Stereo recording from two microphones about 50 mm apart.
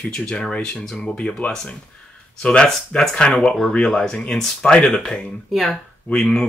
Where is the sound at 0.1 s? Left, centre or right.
Centre.